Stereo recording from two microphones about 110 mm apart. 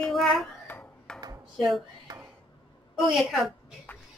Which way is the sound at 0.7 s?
10° left (ahead or behind).